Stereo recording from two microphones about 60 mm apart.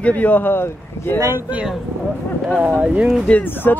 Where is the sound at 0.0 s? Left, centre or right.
Left.